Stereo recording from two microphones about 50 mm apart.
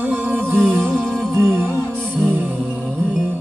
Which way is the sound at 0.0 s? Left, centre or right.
Right.